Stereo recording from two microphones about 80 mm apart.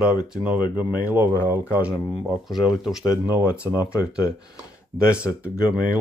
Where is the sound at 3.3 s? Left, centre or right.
Right.